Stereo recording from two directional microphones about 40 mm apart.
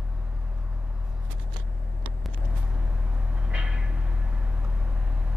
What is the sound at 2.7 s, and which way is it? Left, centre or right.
Vehicle, right.